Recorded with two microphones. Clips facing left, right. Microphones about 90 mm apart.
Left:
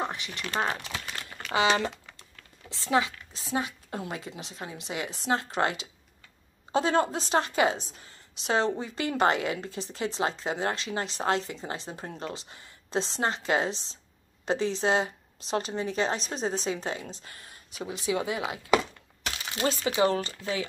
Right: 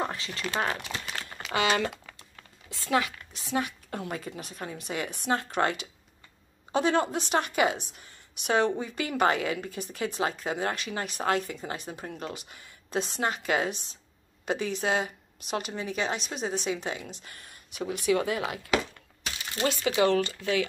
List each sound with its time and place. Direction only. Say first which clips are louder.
0.0 s a sound: right 1 dB; 20° left (ahead or behind)
0.7 s crumpling: right 1 dB; 25° right (ahead or behind)
1.5 s a woman's voice: left 1 dB; 25° left (ahead or behind)
19.9 s speech: right 3 dB; 30° left (ahead or behind)